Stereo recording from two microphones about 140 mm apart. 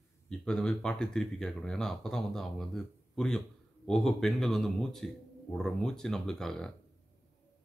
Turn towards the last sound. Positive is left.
turn(degrees=5)  # may be behind; listen again after turning